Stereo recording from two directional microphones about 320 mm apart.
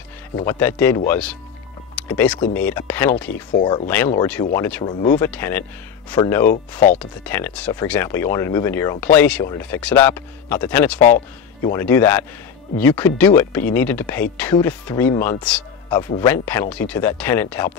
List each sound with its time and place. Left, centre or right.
0.4 s speech: centre
11.0 s speech: left
11.6 s speech: centre